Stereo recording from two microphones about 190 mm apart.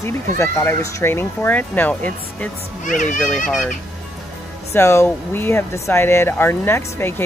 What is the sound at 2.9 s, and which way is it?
Speech, 40° left (ahead or behind).